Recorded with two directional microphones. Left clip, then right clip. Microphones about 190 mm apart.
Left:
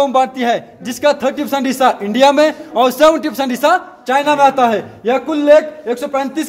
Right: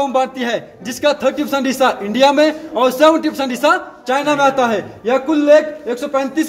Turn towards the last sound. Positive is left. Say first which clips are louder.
# even
turn(degrees=45)  # may be behind; listen again after turning